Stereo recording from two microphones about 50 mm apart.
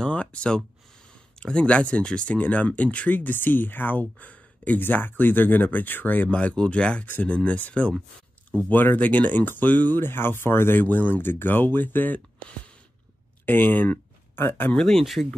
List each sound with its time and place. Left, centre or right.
0.0 s speech: left
4.8 s speech: left
6.2 s speech: left
9.9 s speech: left
13.5 s speech: left
14.8 s speech: centre